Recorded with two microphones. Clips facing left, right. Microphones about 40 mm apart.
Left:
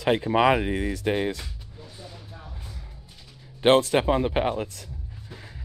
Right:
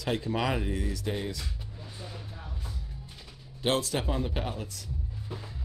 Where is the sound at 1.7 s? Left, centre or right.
Centre.